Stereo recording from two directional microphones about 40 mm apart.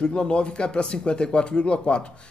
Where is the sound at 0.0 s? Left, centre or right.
Left.